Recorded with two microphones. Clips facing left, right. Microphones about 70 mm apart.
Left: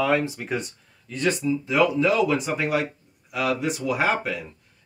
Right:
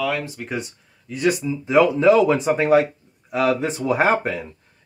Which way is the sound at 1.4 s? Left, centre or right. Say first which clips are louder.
Right 4 dB; right.